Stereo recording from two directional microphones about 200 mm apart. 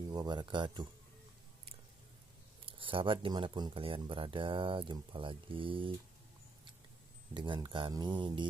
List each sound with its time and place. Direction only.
0.0 s speech: 20° right (ahead or behind)
2.6 s speech: 25° right (ahead or behind)
7.3 s speech: 25° right (ahead or behind)